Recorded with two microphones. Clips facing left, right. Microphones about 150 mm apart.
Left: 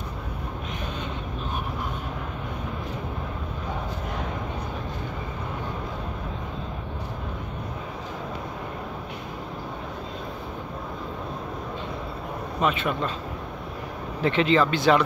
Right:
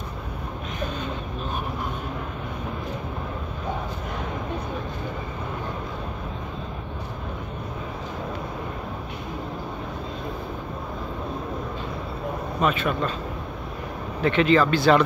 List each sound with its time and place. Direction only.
12.6 s speech: 20° left (ahead or behind)
14.2 s speech: 25° left (ahead or behind)